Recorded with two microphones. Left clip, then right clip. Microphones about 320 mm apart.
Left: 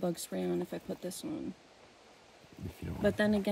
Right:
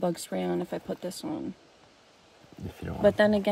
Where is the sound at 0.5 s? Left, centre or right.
Right.